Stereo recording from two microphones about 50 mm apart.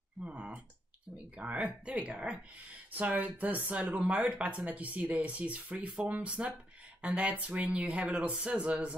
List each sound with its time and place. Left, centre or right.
0.2 s speech: right
2.9 s speech: right
4.0 s speech: right